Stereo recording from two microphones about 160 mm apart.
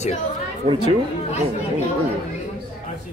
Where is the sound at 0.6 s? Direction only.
40° right (ahead or behind).